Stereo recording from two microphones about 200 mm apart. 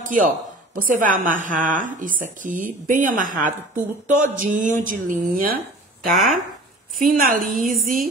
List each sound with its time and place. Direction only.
0.0 s a woman's voice: 40° right (ahead or behind)
6.1 s speech: centre (ahead or behind)
7.0 s a woman's voice: 45° right (ahead or behind)